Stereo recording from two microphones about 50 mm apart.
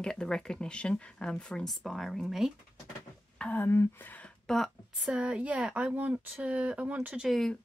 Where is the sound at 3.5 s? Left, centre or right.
Left.